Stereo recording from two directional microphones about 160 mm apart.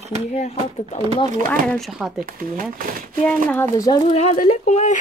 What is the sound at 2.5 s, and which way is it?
Speech, 65° right (ahead or behind).